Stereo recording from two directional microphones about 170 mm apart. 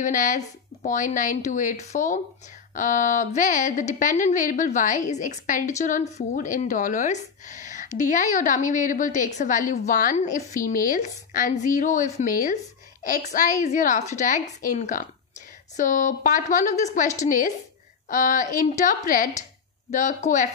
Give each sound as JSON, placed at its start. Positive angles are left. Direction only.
{"t": 0.0, "sound": "speech", "side_deg": 50}